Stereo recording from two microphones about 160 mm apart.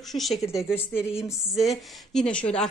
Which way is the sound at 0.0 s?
Centre (ahead or behind).